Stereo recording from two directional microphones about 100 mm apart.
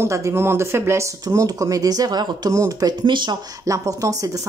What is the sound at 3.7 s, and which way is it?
Speech, 35° right (ahead or behind).